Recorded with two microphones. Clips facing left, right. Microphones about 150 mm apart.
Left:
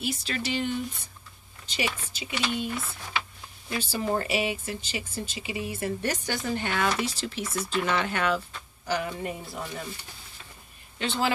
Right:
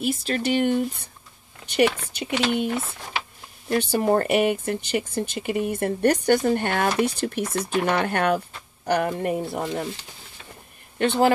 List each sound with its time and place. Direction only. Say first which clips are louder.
0.0 s a woman's voice: right 7 dB; 50° right (ahead or behind); by 9.8 s 70° right (ahead or behind)
11.0 s speech: right 8 dB; 55° right (ahead or behind)